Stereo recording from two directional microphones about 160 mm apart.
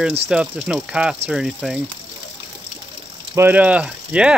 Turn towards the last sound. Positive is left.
turn(degrees=-5)  # may be behind; listen again after turning